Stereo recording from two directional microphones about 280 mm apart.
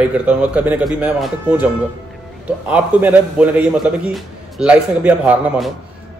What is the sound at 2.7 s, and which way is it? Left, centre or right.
A man's voice, centre.